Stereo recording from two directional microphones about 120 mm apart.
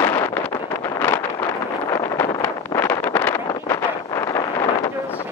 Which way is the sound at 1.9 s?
25° left (ahead or behind).